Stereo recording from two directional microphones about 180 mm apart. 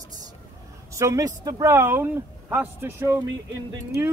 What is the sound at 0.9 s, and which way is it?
Speech, 15° right (ahead or behind).